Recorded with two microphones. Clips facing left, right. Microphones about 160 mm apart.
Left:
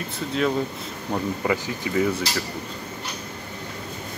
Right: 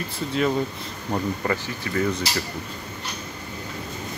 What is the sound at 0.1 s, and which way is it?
Speech, centre (ahead or behind).